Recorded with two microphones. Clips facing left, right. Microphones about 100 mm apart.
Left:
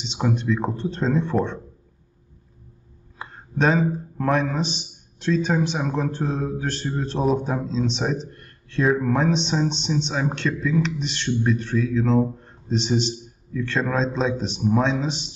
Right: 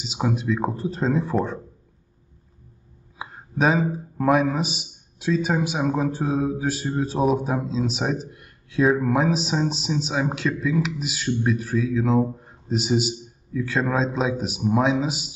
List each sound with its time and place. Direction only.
0.0 s speech: 5° right (ahead or behind)
3.2 s a man's voice: 5° right (ahead or behind)